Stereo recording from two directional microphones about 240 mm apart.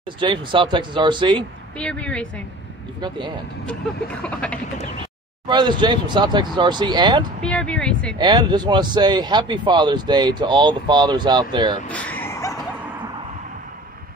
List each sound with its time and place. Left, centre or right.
0.2 s speech: centre
1.8 s speech: centre
3.0 s speech: centre
4.2 s speech: centre
5.5 s speech: centre
7.4 s speech: centre
8.2 s speech: centre
11.9 s a sound: centre